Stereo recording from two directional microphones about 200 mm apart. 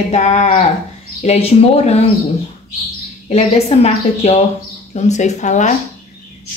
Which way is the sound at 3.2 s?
30° left (ahead or behind).